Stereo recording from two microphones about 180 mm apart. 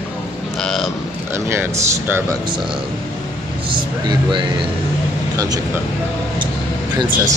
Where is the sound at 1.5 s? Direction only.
10° right (ahead or behind).